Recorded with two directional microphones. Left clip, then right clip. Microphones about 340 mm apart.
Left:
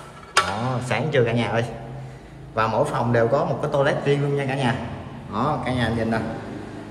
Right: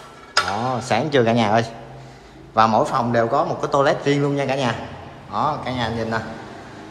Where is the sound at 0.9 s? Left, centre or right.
Centre.